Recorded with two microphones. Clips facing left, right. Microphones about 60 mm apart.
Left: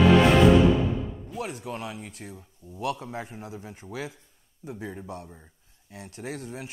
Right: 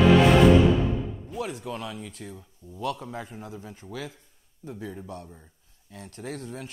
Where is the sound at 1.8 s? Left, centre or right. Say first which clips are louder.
Even; centre.